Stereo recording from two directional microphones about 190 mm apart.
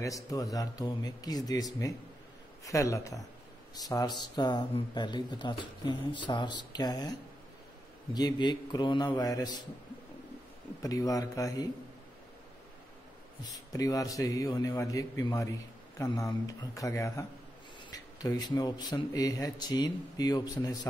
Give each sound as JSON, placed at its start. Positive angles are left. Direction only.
{"t": 0.0, "sound": "speech", "side_deg": 15}
{"t": 10.8, "sound": "speech", "side_deg": 20}
{"t": 13.4, "sound": "speech", "side_deg": 20}